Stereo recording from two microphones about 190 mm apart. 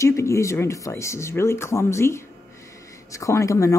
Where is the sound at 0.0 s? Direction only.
15° left (ahead or behind).